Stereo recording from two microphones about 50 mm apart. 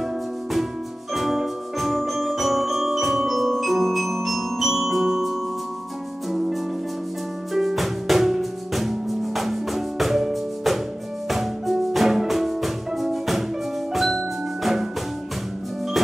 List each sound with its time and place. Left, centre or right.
1.1 s music: centre